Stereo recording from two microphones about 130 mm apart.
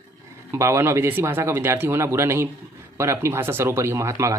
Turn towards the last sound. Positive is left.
turn(degrees=-25)  # may be behind; listen again after turning